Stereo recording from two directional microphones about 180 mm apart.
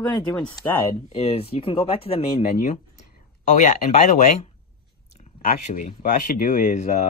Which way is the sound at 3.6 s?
40° left (ahead or behind).